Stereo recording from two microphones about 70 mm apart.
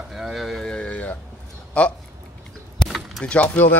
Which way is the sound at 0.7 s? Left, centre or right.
Centre.